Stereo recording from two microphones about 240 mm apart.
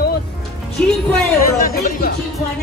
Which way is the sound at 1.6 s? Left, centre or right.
Left.